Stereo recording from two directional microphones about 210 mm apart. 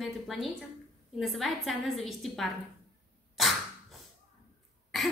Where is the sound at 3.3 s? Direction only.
Centre (ahead or behind).